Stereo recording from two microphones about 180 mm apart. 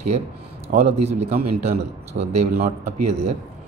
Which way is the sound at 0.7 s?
50° right (ahead or behind).